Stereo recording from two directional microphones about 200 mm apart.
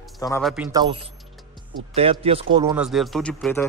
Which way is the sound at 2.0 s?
30° right (ahead or behind).